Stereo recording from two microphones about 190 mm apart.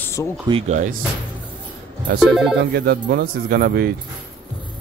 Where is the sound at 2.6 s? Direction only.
60° right (ahead or behind).